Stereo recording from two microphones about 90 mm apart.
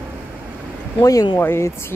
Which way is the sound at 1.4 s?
25° left (ahead or behind).